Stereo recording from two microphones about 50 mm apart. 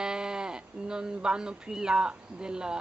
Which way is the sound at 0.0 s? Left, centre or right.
Centre.